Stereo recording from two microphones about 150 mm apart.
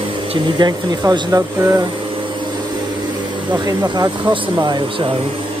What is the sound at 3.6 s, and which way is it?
Speech, 25° right (ahead or behind).